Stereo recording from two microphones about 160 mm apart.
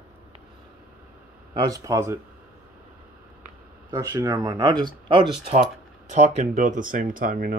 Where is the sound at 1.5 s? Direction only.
25° right (ahead or behind).